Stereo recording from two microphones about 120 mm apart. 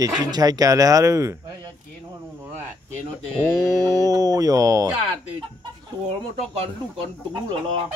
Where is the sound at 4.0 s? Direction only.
30° right (ahead or behind).